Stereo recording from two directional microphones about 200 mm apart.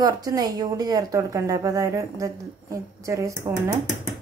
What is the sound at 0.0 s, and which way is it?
A woman's voice, 20° right (ahead or behind).